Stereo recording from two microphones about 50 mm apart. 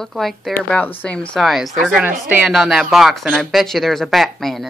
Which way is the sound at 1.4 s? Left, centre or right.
Centre.